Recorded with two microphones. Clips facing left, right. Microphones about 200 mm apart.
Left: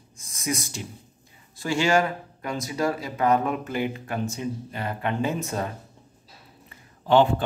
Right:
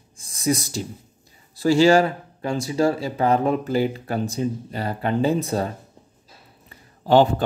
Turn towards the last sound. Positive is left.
turn(degrees=-40)  # may be behind; listen again after turning